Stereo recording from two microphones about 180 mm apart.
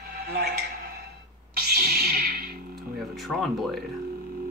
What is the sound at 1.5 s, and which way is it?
Music, 55° right (ahead or behind).